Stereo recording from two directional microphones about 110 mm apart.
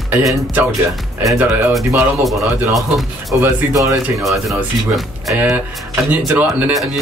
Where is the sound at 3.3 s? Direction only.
20° right (ahead or behind).